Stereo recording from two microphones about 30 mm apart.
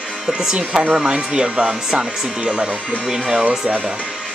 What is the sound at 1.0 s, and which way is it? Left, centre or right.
Speech, right.